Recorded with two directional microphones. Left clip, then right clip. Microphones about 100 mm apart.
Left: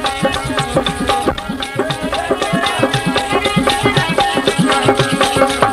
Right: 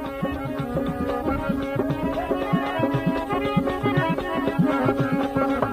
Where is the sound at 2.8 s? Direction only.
35° right (ahead or behind).